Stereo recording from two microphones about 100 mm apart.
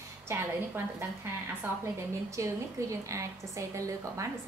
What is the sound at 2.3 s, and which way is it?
A woman's voice, 30° right (ahead or behind).